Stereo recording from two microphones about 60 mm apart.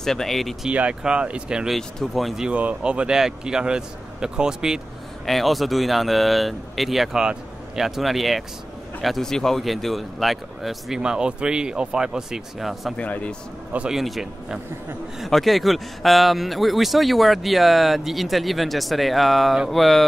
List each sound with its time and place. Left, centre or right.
0.0 s speech: centre
0.7 s speech: centre
1.7 s speech: centre
2.5 s speech: right
5.2 s speech: centre
11.0 s speech: centre
12.9 s speech: left
13.8 s speech: centre